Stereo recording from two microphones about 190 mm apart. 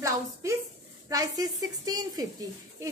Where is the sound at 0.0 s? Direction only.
15° right (ahead or behind).